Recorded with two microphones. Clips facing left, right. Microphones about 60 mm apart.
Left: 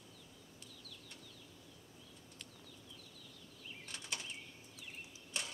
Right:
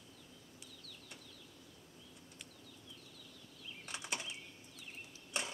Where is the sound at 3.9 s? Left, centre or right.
Right.